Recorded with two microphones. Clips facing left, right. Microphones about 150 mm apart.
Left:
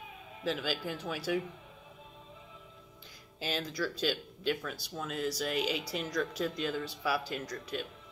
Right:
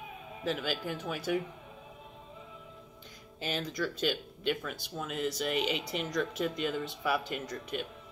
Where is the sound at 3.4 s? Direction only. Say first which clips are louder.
Right 1 dB; 5° left (ahead or behind).